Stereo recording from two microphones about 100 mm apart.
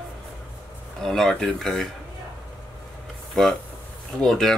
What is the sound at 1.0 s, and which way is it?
Speech, 5° left (ahead or behind).